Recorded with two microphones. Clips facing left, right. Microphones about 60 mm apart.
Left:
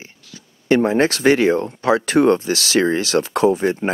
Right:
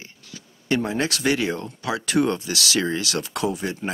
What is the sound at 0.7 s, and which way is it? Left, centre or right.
Speech, left.